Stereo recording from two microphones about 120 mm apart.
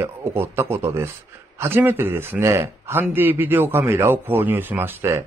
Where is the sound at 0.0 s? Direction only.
20° right (ahead or behind).